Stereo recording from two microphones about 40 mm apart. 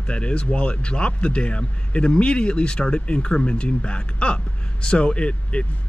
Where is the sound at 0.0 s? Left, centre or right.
Left.